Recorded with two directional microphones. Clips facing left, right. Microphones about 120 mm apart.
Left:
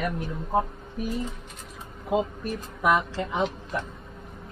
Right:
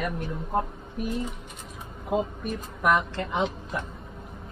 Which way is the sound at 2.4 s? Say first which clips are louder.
Even; 5° left (ahead or behind).